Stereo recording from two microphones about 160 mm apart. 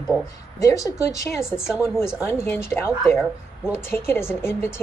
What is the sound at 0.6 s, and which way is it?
A woman's voice, 20° left (ahead or behind).